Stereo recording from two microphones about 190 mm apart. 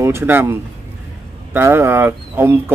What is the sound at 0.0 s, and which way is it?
Speech, 15° right (ahead or behind).